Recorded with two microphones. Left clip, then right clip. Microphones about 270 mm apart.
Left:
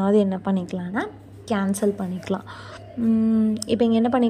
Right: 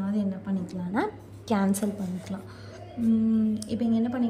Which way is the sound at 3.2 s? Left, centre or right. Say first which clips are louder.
Left 5 dB; centre.